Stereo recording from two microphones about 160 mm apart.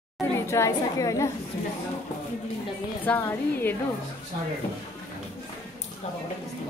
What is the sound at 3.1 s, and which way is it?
Speech, 10° left (ahead or behind).